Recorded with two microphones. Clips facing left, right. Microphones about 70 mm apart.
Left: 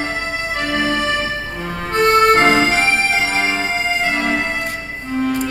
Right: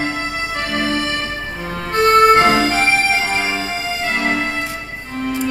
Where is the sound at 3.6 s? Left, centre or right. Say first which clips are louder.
Left 3 dB; left.